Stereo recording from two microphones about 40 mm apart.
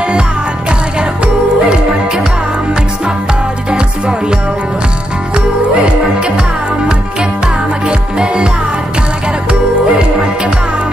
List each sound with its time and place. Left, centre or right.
0.7 s music: right
6.1 s music: right
7.8 s music: right
9.5 s music: right